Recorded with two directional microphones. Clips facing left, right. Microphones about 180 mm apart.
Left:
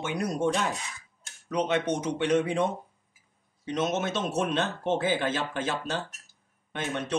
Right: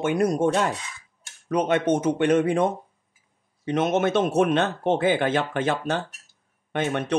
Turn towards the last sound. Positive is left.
turn(degrees=-60)  # may be behind; listen again after turning